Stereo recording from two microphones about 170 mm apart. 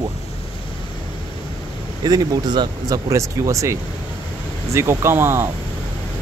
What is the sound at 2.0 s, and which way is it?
Speech, 20° right (ahead or behind).